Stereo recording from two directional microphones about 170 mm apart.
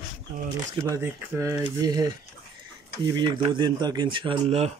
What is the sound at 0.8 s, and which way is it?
Speech, 15° right (ahead or behind).